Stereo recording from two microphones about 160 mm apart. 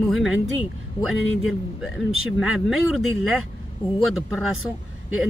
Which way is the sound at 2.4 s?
Centre (ahead or behind).